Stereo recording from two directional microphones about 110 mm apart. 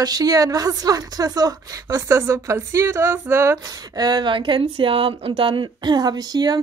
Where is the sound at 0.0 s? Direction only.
35° right (ahead or behind).